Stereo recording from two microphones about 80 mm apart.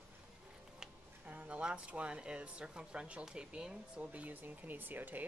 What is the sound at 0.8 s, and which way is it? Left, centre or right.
Speech, centre.